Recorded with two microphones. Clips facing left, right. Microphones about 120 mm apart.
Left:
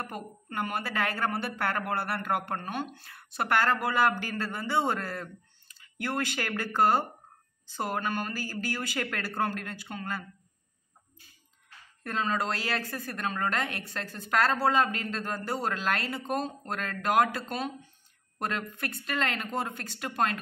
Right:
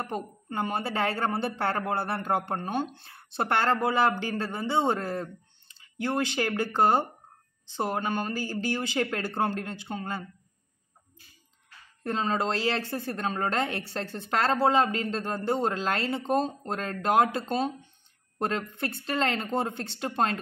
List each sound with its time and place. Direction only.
0.0 s a woman's voice: 25° right (ahead or behind)
12.0 s a woman's voice: 25° right (ahead or behind)